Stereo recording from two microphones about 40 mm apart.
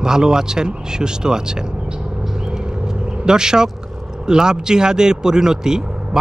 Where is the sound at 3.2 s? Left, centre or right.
Centre.